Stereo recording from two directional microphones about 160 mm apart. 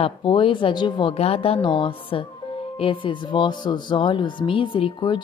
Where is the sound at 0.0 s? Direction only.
35° left (ahead or behind).